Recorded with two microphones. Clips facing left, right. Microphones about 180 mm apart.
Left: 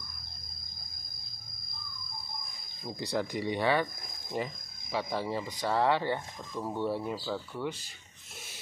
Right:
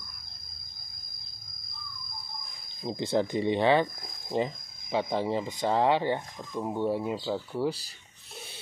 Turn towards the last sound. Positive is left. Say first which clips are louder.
# right 6 dB
turn(degrees=-35)  # may be behind; listen again after turning